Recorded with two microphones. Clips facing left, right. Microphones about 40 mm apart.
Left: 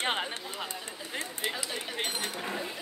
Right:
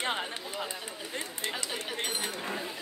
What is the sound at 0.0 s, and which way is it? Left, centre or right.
Speech, left.